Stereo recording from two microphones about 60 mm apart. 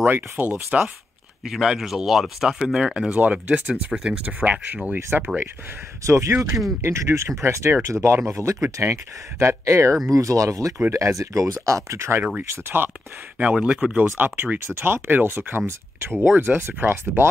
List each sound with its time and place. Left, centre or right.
0.0 s speech: right
0.7 s speech: right
1.4 s speech: centre
2.6 s speech: centre
3.2 s speech: right
3.9 s speech: centre
4.2 s speech: right
6.0 s speech: right
10.1 s speech: right
12.4 s speech: right
13.4 s speech: centre
14.0 s speech: right